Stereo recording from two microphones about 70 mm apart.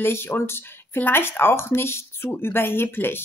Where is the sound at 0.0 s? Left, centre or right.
Left.